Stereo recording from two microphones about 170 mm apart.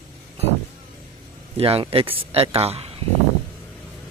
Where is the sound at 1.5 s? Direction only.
35° right (ahead or behind).